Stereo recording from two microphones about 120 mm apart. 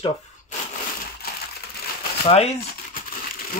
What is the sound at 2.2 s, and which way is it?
Speech, 60° left (ahead or behind).